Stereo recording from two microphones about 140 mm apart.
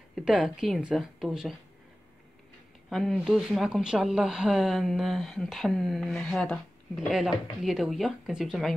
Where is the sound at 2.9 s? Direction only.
Centre (ahead or behind).